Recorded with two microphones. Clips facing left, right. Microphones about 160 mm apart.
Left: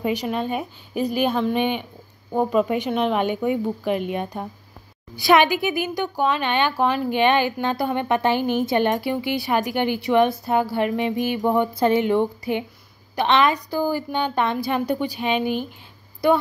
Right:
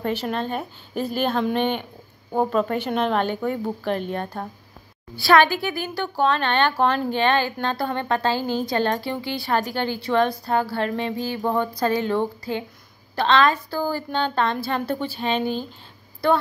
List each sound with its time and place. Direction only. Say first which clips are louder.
0.0 s a woman's voice: left 1 dB; 10° left (ahead or behind)